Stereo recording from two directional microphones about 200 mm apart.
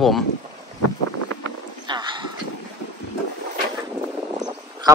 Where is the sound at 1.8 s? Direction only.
20° right (ahead or behind).